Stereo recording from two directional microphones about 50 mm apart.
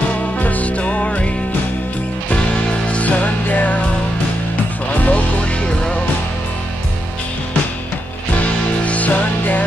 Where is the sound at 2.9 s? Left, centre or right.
Left.